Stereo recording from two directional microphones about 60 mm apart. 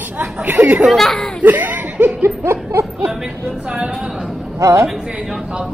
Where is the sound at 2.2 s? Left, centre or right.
Right.